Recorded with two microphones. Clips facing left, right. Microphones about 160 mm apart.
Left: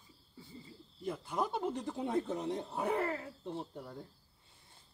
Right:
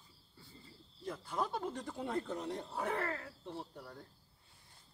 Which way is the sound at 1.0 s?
15° left (ahead or behind).